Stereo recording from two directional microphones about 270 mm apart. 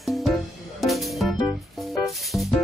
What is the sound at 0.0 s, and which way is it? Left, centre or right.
Music, centre.